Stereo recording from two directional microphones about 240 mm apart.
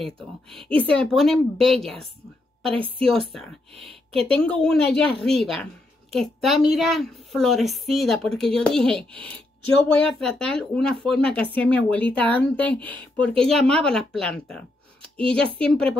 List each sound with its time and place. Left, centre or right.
0.0 s speech: centre
3.7 s a woman's voice: right
4.3 s speech: centre